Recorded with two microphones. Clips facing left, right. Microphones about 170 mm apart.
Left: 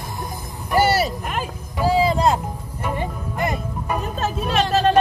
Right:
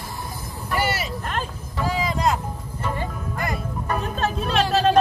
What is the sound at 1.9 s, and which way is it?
Music, 30° left (ahead or behind).